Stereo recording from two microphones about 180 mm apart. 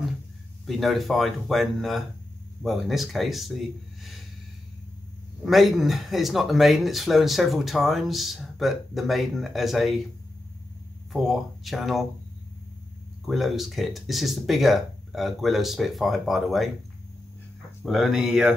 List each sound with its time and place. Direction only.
0.7 s speech: centre (ahead or behind)
5.4 s speech: centre (ahead or behind)
11.1 s speech: centre (ahead or behind)
13.2 s speech: centre (ahead or behind)
17.8 s speech: centre (ahead or behind)